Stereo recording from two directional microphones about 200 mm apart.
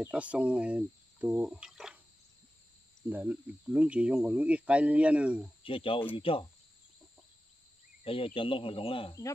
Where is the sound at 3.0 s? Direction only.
10° right (ahead or behind).